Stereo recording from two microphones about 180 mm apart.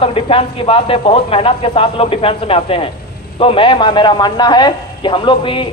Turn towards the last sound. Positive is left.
turn(degrees=30)  # may be behind; listen again after turning